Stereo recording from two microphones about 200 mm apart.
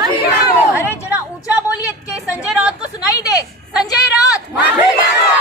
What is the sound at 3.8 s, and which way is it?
Speech, 20° left (ahead or behind).